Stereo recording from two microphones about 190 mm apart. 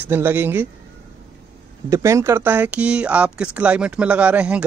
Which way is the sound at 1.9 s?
15° right (ahead or behind).